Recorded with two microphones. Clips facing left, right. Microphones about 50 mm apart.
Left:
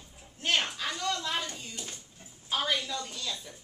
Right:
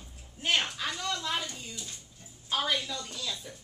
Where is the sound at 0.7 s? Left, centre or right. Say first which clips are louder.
Left 1 dB; centre.